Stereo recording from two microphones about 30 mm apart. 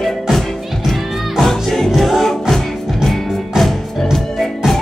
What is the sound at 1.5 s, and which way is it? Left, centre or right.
Music, centre.